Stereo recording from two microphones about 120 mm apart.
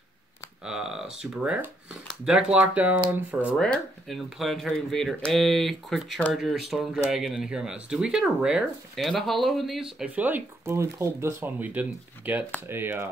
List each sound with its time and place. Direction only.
0.7 s speech: 5° right (ahead or behind)
3.5 s speech: 5° left (ahead or behind); by 13.1 s 20° right (ahead or behind)